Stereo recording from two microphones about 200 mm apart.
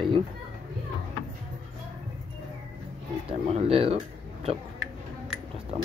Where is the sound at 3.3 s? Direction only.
30° right (ahead or behind).